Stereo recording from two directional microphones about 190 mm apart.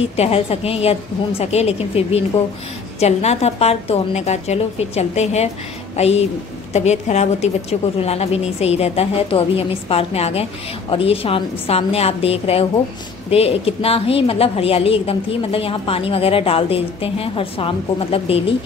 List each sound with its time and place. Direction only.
0.1 s a woman's voice: 30° left (ahead or behind)